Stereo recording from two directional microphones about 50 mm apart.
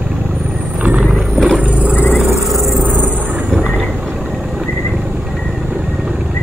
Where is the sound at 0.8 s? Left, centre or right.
Right.